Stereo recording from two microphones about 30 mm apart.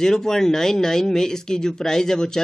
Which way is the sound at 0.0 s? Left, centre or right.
Centre.